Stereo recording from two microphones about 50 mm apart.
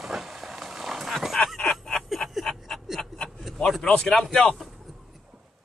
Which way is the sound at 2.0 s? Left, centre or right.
Centre.